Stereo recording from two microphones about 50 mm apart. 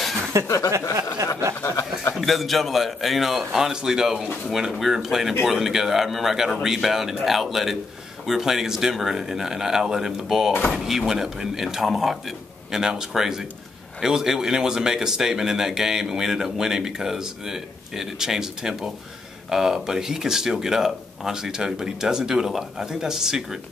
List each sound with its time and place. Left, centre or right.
0.3 s speech: right
0.8 s a sound: left
2.1 s speech: centre